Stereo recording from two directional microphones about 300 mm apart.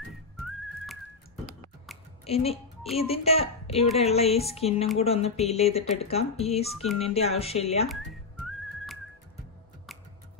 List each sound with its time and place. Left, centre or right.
0.4 s whistling: centre
2.2 s speech: left
8.5 s whistling: centre